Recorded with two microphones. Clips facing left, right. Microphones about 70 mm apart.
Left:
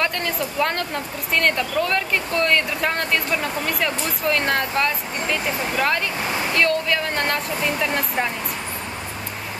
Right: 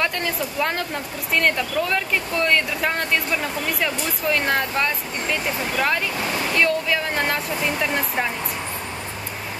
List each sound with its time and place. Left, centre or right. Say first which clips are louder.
0.0 s speech: even; centre